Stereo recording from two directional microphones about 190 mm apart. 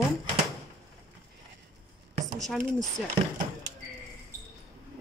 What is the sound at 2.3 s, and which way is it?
Speech, centre (ahead or behind).